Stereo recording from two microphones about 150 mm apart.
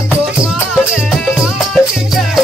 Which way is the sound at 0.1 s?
5° right (ahead or behind).